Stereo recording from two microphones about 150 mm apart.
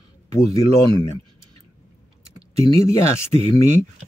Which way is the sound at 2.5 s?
20° left (ahead or behind).